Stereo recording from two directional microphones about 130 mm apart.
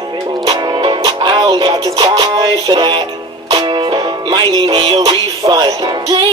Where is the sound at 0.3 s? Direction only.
35° right (ahead or behind).